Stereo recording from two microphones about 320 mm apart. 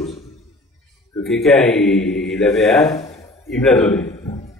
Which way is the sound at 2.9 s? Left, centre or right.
Centre.